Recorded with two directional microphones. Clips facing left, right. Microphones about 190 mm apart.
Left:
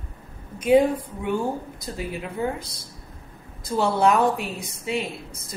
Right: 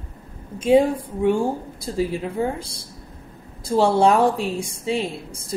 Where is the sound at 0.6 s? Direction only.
25° right (ahead or behind).